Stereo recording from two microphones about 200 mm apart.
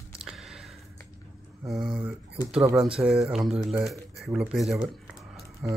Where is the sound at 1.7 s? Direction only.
5° right (ahead or behind).